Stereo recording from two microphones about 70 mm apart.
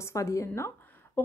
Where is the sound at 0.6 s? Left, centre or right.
Left.